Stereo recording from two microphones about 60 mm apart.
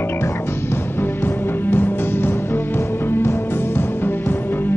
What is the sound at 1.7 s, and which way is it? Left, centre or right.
Music, left.